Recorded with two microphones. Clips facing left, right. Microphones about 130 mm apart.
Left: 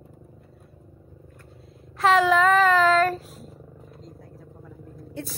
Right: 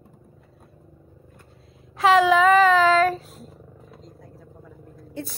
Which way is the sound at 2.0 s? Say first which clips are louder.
Right 2 dB; centre (ahead or behind).